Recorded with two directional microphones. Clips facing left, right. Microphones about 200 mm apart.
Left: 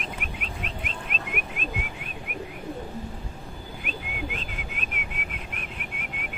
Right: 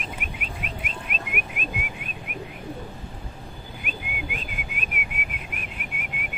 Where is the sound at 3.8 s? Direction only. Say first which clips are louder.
Left 1 dB; 10° right (ahead or behind).